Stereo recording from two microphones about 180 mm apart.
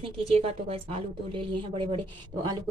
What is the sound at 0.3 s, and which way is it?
A woman's voice, 35° right (ahead or behind).